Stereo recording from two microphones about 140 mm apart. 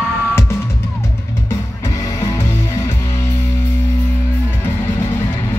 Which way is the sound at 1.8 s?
25° left (ahead or behind).